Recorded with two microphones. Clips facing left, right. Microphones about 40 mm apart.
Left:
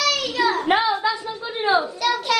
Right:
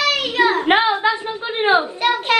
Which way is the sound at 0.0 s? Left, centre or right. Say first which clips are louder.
Right 4 dB; right.